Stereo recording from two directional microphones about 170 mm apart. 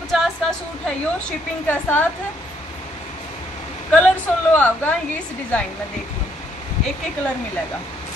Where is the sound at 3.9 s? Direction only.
10° left (ahead or behind).